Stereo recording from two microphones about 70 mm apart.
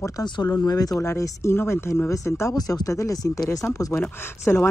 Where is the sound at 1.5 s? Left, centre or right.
Left.